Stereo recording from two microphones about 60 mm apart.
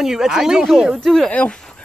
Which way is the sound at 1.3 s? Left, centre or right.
Centre.